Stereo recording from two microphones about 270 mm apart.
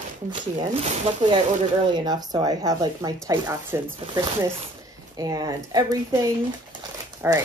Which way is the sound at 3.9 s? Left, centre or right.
Right.